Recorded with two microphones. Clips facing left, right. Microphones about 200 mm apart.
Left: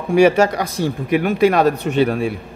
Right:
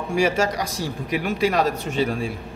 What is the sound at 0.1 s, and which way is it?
Speech, 60° left (ahead or behind).